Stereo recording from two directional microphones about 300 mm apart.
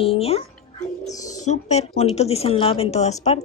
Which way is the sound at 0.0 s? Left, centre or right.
Centre.